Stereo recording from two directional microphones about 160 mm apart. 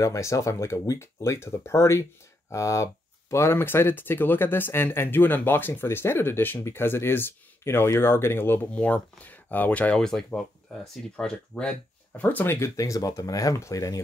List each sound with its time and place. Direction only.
0.0 s speech: 20° left (ahead or behind)